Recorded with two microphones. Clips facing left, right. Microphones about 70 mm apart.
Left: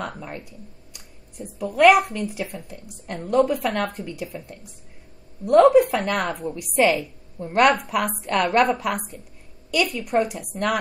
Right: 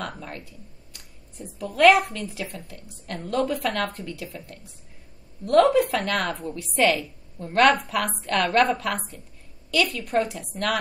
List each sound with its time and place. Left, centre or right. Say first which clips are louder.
0.0 s a woman's voice: left 2 dB; centre